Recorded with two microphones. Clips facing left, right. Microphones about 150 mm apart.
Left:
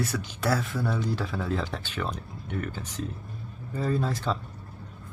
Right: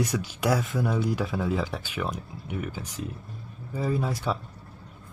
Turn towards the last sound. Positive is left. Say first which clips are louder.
# even
turn(degrees=-10)  # may be behind; listen again after turning